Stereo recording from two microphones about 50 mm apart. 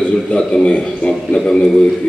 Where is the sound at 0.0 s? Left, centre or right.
Left.